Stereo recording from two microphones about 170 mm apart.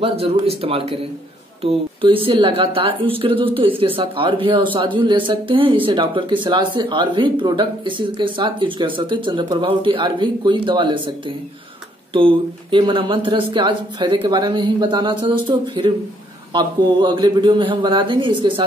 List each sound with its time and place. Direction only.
0.0 s a woman's voice: 35° right (ahead or behind)